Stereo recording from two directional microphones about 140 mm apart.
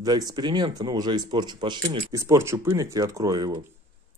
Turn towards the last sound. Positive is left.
turn(degrees=-30)  # may be behind; listen again after turning